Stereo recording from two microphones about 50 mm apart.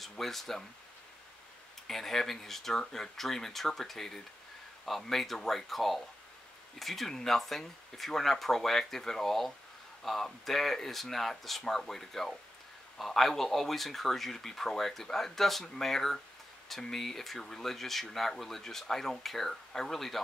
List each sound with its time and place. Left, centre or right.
0.0 s speech: centre
1.9 s speech: centre